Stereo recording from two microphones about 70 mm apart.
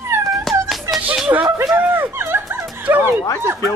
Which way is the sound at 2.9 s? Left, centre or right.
Right.